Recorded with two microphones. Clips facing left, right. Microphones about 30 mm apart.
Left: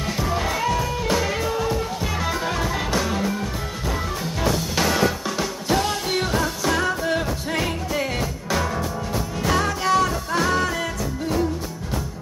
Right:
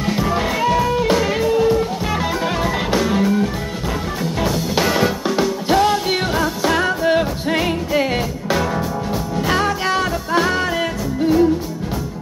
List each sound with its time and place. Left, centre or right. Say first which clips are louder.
0.0 s music: right 5 dB; centre
4.4 s music: right 3 dB; centre